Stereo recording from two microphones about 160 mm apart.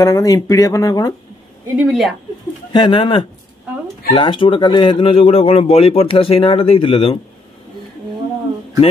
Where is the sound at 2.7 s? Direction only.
30° left (ahead or behind).